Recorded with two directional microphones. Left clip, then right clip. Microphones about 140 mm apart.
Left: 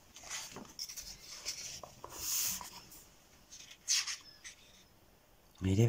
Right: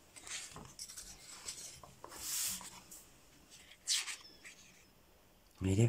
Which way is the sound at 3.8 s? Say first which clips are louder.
Left 3 dB; 25° right (ahead or behind).